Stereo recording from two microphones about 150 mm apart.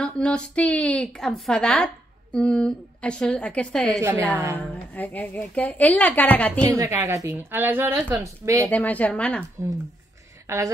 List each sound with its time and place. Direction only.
0.0 s a woman's voice: 5° left (ahead or behind)
4.0 s a woman's voice: 15° right (ahead or behind)
4.9 s a woman's voice: 10° left (ahead or behind)
6.6 s a woman's voice: 20° right (ahead or behind)
8.6 s a woman's voice: 10° left (ahead or behind)
10.4 s a woman's voice: 20° right (ahead or behind)